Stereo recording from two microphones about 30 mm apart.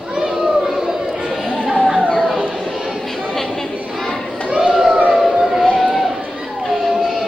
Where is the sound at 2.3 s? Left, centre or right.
Centre.